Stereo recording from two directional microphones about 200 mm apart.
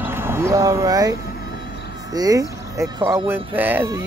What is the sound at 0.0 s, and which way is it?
Speech, 10° right (ahead or behind).